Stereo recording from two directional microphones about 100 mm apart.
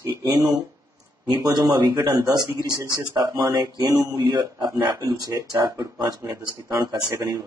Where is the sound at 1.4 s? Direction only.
45° right (ahead or behind).